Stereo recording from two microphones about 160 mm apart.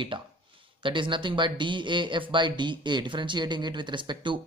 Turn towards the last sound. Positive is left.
turn(degrees=-30)  # may be behind; listen again after turning